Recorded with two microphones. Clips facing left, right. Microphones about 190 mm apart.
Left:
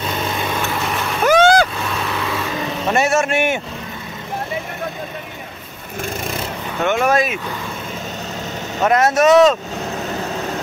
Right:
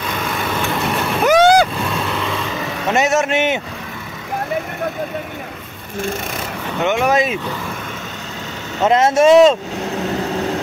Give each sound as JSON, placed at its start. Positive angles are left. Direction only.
{"t": 1.2, "sound": "vehicle", "side_deg": -15}
{"t": 2.0, "sound": "vehicle", "side_deg": 0}
{"t": 2.9, "sound": "a man's voice", "side_deg": -20}
{"t": 6.8, "sound": "speech", "side_deg": -15}
{"t": 8.8, "sound": "speech", "side_deg": -25}